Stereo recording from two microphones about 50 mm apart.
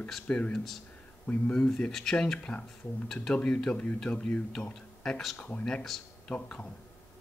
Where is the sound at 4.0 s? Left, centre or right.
Centre.